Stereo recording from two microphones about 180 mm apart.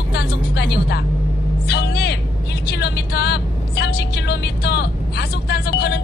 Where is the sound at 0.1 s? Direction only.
65° left (ahead or behind).